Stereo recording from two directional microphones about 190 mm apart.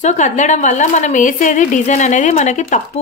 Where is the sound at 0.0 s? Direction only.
40° left (ahead or behind).